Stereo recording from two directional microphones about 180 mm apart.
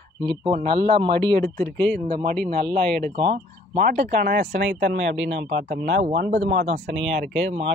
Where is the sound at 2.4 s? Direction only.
55° right (ahead or behind).